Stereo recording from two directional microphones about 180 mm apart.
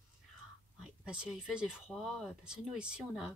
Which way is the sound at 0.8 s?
5° right (ahead or behind).